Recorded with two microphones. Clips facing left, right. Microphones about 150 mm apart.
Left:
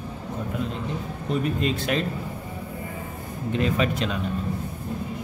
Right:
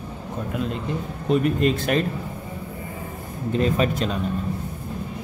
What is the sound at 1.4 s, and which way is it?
Speech, 55° right (ahead or behind).